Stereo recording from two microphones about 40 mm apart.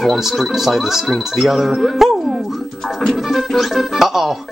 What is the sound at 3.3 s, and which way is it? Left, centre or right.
Speech, centre.